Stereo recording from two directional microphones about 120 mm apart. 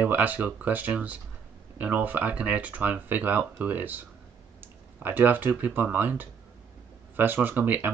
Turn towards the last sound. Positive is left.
turn(degrees=-15)  # may be behind; listen again after turning